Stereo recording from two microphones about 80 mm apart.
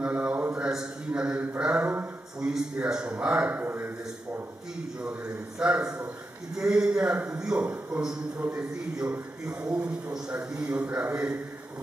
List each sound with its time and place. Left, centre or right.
0.0 s a sound: centre
1.6 s speech: centre
5.0 s speech: centre
7.6 s a man's voice: centre